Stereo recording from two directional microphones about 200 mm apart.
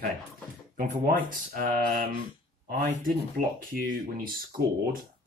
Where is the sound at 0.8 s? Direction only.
45° right (ahead or behind).